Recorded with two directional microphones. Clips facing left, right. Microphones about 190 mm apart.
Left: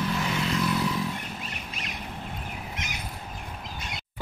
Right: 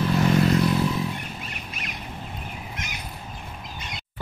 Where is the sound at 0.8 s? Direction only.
25° right (ahead or behind).